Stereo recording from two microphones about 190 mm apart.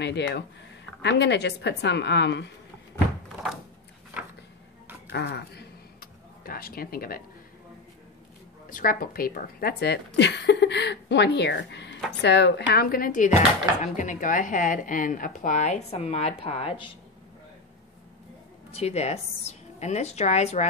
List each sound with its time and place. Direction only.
0.0 s a woman's voice: 65° left (ahead or behind)
5.1 s a sound: 60° left (ahead or behind)
8.6 s a woman's voice: 45° left (ahead or behind); by 16.9 s 30° left (ahead or behind)
18.7 s a woman's voice: 35° left (ahead or behind)